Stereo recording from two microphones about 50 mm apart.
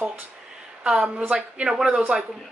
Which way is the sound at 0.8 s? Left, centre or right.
Centre.